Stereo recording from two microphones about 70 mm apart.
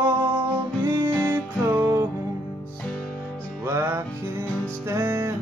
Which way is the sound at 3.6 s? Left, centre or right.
Right.